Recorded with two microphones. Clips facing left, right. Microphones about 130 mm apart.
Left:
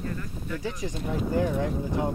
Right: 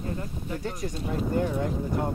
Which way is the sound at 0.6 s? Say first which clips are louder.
Left 1 dB; centre (ahead or behind).